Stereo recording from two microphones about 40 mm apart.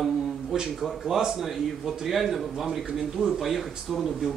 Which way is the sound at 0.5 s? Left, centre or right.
Centre.